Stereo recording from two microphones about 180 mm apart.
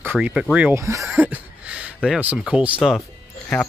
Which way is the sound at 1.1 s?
10° right (ahead or behind).